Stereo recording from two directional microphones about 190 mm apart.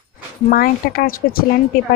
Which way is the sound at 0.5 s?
50° left (ahead or behind).